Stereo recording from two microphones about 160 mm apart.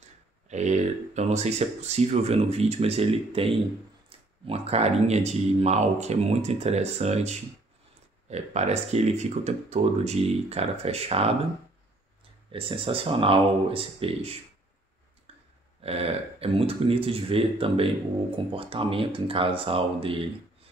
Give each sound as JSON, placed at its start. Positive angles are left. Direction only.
{"t": 0.5, "sound": "speech", "side_deg": -45}
{"t": 12.5, "sound": "speech", "side_deg": -35}
{"t": 15.8, "sound": "speech", "side_deg": -40}